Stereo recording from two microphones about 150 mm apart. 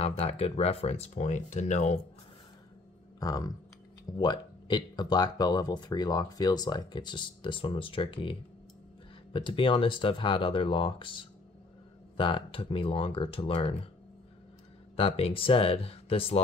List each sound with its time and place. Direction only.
0.0 s speech: 40° left (ahead or behind)
3.2 s speech: 25° left (ahead or behind)
15.0 s speech: 40° left (ahead or behind)